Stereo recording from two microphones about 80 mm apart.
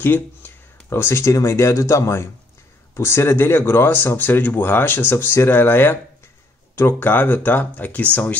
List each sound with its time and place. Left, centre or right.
0.0 s speech: left